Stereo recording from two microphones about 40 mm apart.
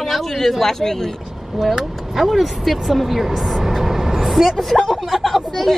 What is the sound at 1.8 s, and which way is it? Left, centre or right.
Speech, centre.